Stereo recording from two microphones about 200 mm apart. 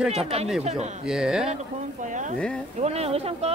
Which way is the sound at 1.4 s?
35° right (ahead or behind).